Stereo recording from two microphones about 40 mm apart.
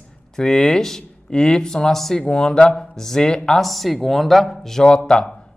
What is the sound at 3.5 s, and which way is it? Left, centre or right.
Speech, centre.